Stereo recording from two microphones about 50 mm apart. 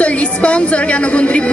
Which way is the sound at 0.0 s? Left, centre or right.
Left.